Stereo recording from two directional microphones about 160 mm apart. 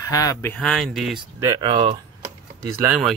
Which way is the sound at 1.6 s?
30° right (ahead or behind).